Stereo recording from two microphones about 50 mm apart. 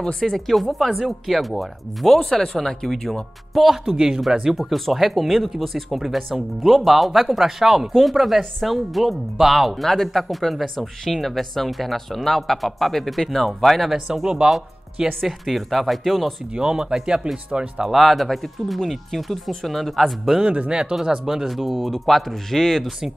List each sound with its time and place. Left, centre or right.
0.0 s speech: centre
2.1 s speech: centre
4.6 s speech: centre
13.9 s speech: centre
15.2 s speech: centre
16.5 s speech: centre
17.9 s speech: centre
20.4 s speech: right
20.9 s speech: centre